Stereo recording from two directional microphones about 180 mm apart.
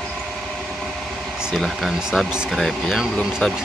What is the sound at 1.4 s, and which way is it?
Speech, centre (ahead or behind).